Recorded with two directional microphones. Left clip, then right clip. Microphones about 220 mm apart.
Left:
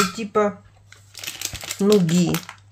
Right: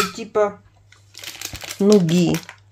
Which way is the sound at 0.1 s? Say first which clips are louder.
Right 1 dB; 15° right (ahead or behind).